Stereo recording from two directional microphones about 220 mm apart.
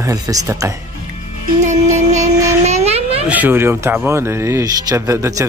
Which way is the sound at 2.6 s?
30° right (ahead or behind).